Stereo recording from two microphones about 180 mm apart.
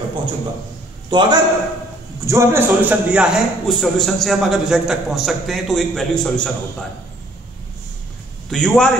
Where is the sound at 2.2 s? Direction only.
15° right (ahead or behind); by 6.5 s 5° left (ahead or behind).